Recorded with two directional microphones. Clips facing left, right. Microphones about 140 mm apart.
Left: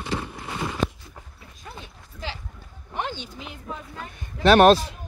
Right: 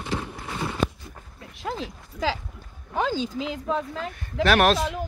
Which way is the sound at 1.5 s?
90° right.